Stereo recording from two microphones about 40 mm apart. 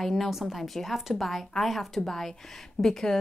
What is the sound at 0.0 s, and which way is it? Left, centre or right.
Speech, centre.